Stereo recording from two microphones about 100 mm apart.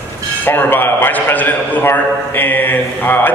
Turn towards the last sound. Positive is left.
turn(degrees=20)  # may be behind; listen again after turning